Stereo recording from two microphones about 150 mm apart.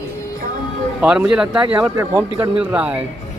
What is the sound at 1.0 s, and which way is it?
Speech, 10° right (ahead or behind).